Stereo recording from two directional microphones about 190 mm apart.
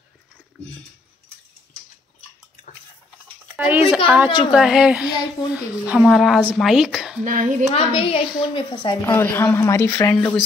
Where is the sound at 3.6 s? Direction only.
10° right (ahead or behind).